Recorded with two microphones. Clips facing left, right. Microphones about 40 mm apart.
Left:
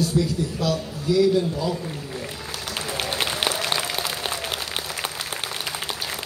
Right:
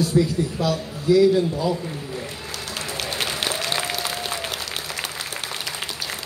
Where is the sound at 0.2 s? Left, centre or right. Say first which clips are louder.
Right 5 dB; right.